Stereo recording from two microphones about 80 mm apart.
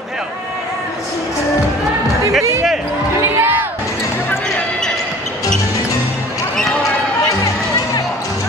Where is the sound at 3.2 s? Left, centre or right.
Right.